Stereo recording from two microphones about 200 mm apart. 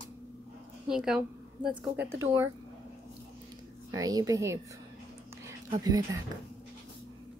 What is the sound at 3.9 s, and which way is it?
Speech, 15° right (ahead or behind).